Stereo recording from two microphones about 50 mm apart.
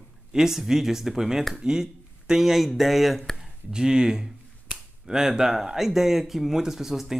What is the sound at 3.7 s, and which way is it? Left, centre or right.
Speech, centre.